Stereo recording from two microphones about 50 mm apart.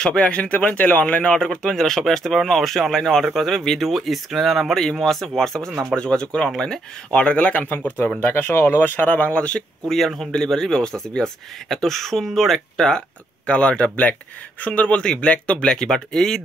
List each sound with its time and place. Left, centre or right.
0.0 s speech: left
1.4 s speech: centre
5.9 s speech: centre
7.7 s speech: left
9.0 s speech: left
9.8 s speech: centre
13.5 s speech: left